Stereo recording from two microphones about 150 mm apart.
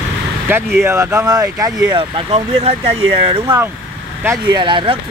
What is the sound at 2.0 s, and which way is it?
Speech, 40° right (ahead or behind).